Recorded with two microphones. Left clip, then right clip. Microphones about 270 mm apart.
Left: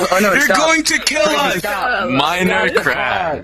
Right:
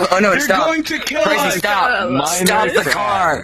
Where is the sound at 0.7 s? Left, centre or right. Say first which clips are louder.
Left 4 dB; left.